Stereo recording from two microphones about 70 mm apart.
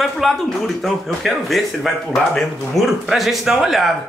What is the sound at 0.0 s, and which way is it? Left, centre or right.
A man's voice, centre.